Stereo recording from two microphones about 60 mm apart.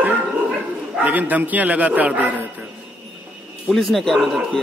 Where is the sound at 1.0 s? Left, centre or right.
Right.